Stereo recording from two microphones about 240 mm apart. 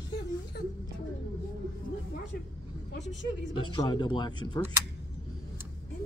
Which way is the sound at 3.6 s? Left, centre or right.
Centre.